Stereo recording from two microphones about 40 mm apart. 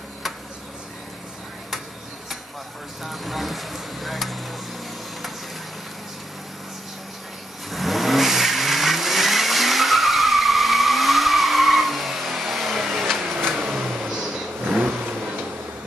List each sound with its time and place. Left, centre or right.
3.0 s a sound: centre
7.7 s vehicle: centre
14.0 s vehicle: centre